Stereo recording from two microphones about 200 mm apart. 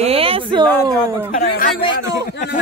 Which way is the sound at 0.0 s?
30° right (ahead or behind).